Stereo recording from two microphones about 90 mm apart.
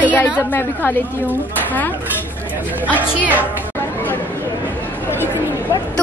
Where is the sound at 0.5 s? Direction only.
20° left (ahead or behind).